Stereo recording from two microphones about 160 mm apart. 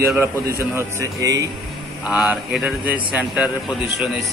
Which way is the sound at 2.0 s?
Centre (ahead or behind).